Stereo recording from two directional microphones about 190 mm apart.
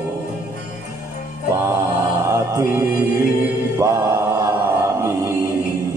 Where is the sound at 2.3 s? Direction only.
15° right (ahead or behind).